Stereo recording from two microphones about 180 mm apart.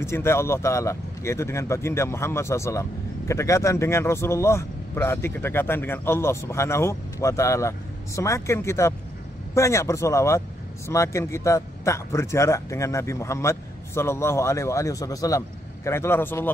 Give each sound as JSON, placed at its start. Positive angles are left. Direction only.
{"t": 0.0, "sound": "speech", "side_deg": 15}